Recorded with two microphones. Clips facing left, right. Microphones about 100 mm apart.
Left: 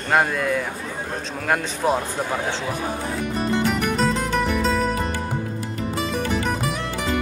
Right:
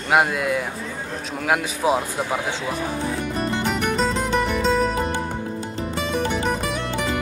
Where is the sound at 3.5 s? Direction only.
Centre (ahead or behind).